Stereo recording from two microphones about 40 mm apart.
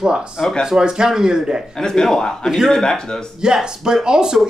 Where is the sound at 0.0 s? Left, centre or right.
Right.